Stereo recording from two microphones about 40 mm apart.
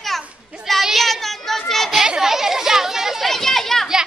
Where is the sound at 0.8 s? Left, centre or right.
Centre.